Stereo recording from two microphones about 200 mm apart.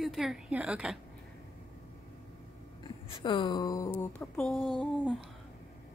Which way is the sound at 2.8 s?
25° left (ahead or behind).